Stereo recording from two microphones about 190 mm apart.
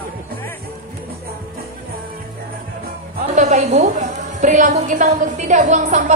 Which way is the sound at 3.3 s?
40° right (ahead or behind).